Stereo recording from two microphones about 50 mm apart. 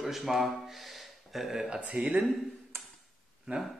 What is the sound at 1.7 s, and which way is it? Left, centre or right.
Speech, right.